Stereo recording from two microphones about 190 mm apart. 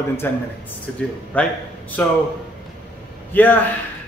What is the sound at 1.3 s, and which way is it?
Speech, 10° left (ahead or behind).